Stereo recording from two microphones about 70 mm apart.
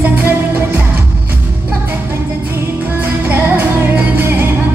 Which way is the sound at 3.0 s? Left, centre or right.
Right.